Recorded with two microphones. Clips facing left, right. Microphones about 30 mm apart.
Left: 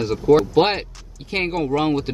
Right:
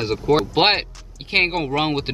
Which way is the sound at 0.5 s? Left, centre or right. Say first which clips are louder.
Even; right.